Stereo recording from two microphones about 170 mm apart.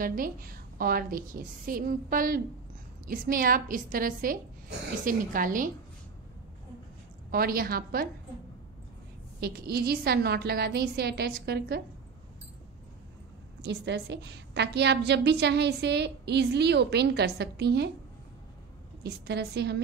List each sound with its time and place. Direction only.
0.0 s a woman's voice: 55° right (ahead or behind)
7.2 s a woman's voice: 60° right (ahead or behind)
9.4 s a woman's voice: 65° right (ahead or behind)
13.6 s a woman's voice: 85° right
19.0 s a woman's voice: 75° right (ahead or behind)